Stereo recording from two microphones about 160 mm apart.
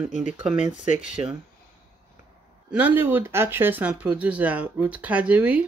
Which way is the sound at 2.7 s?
10° right (ahead or behind).